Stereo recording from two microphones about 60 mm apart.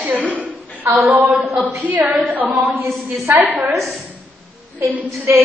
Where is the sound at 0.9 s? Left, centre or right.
Right.